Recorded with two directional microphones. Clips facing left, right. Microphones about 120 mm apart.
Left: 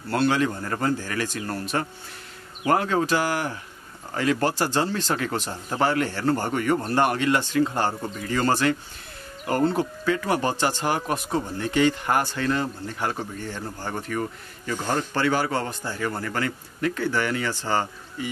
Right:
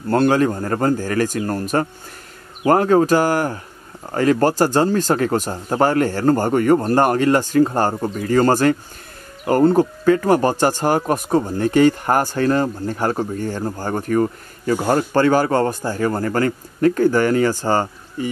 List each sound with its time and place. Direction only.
0.1 s speech: 45° right (ahead or behind)